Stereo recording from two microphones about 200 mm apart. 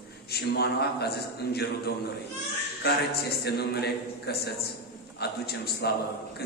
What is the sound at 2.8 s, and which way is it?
A man's voice, 50° left (ahead or behind).